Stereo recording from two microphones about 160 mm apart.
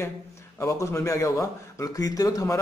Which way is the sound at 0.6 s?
20° left (ahead or behind).